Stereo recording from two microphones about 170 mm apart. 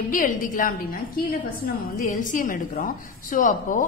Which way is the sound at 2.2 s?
50° left (ahead or behind).